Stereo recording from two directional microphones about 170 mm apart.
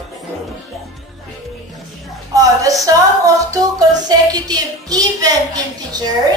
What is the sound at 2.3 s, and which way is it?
Music, 20° right (ahead or behind).